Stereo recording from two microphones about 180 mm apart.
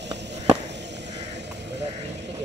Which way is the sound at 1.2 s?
75° right (ahead or behind).